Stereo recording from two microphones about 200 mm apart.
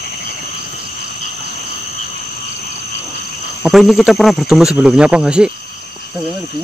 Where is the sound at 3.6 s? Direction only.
Centre (ahead or behind).